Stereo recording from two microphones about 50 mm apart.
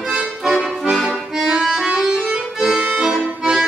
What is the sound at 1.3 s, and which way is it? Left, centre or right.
Music, centre.